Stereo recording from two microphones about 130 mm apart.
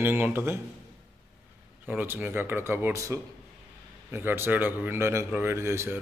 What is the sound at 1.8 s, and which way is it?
A man's voice, 15° right (ahead or behind).